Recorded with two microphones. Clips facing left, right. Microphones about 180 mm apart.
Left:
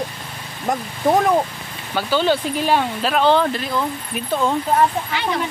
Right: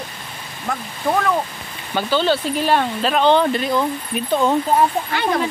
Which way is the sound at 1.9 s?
10° left (ahead or behind).